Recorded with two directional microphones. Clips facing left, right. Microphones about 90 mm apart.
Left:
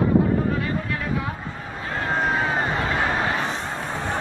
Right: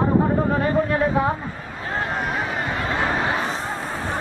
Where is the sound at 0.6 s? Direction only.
35° right (ahead or behind).